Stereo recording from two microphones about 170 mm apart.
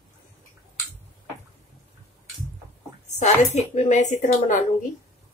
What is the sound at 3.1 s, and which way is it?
Speech, 40° left (ahead or behind).